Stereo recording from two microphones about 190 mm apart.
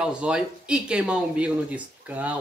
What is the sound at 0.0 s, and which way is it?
Speech, 5° right (ahead or behind).